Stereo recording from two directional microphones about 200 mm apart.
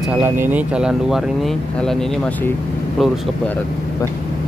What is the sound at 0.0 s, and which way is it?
Speech, 10° right (ahead or behind).